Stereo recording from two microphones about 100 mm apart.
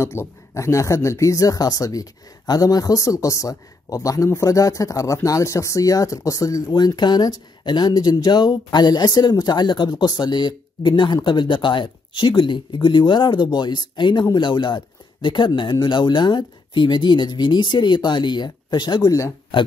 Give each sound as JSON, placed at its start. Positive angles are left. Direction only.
{"t": 0.0, "sound": "speech", "side_deg": 30}
{"t": 19.5, "sound": "speech", "side_deg": 55}